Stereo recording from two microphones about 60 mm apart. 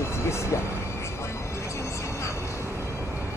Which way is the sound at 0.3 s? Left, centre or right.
Left.